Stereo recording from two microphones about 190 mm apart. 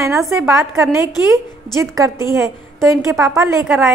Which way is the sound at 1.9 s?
15° right (ahead or behind).